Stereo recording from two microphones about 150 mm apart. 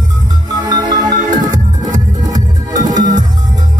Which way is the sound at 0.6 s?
25° right (ahead or behind).